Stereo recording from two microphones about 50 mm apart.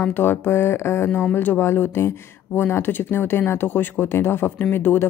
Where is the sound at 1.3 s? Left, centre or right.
Left.